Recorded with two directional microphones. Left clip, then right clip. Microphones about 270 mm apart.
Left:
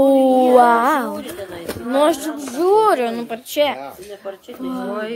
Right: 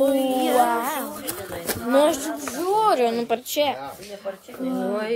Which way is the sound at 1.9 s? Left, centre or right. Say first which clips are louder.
Left 3 dB; centre.